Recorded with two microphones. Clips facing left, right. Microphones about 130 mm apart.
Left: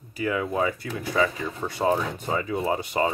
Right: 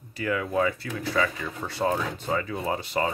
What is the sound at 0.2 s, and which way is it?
Speech, 20° left (ahead or behind).